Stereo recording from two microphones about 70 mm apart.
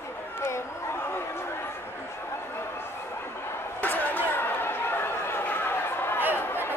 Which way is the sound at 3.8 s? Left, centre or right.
Left.